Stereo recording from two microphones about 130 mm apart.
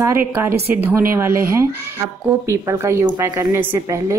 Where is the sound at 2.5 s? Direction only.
20° right (ahead or behind).